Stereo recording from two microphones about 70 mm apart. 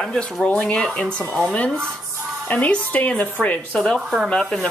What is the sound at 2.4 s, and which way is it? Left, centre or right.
A woman's voice, left.